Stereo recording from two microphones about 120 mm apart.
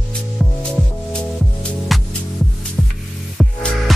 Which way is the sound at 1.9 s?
Centre (ahead or behind).